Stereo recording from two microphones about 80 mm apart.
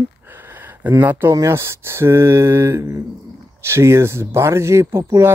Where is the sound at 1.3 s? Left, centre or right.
Right.